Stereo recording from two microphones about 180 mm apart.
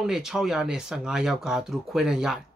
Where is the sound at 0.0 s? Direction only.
Centre (ahead or behind).